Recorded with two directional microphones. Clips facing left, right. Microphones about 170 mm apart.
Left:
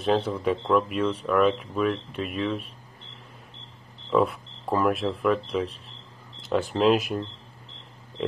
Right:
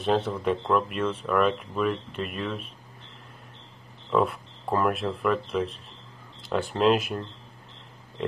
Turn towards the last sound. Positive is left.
turn(degrees=0)  # may be behind; listen again after turning